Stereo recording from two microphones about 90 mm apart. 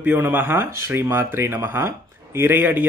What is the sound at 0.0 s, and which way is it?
Speech, 20° right (ahead or behind).